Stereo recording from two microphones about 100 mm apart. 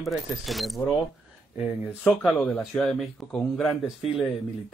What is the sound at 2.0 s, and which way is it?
Speech, 5° left (ahead or behind).